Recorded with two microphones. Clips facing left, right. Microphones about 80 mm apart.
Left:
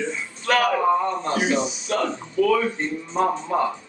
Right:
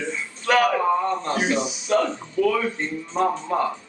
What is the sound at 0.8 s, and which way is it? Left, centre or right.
Speech, centre.